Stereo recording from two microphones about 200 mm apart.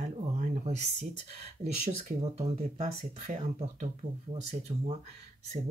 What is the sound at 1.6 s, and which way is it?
Speech, 35° right (ahead or behind).